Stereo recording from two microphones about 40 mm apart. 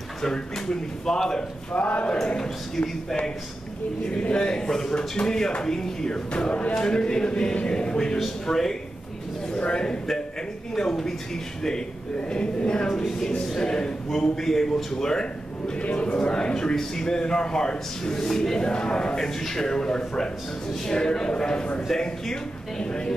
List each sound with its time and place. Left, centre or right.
0.2 s a man's voice: centre
1.7 s a man's voice: left
2.2 s a man's voice: centre
4.1 s a man's voice: left
8.5 s a man's voice: centre
9.5 s a man's voice: left
10.7 s a man's voice: centre
12.3 s a man's voice: left
14.3 s a man's voice: centre
15.8 s a man's voice: left; by 18.7 s centre
18.7 s a man's voice: left